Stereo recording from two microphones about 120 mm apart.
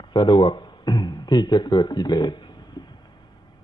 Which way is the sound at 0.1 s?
40° left (ahead or behind).